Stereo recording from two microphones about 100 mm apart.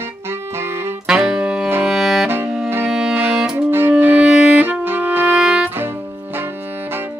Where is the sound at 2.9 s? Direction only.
5° right (ahead or behind).